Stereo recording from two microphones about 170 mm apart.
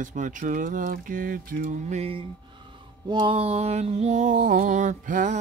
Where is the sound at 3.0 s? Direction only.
30° right (ahead or behind).